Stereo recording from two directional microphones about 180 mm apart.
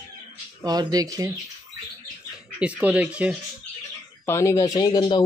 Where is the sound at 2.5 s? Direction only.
5° right (ahead or behind).